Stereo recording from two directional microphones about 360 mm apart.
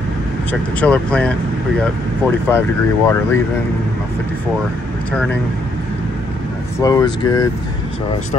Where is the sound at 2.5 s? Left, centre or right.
Centre.